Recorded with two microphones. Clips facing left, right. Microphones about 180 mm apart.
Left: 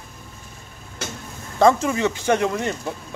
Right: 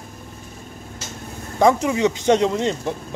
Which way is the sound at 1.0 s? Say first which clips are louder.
Left 7 dB; 60° left (ahead or behind).